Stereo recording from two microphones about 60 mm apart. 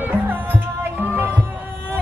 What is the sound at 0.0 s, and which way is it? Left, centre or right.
Music, right.